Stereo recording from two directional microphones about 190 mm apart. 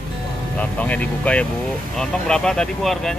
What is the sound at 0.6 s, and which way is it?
Speech, 5° left (ahead or behind).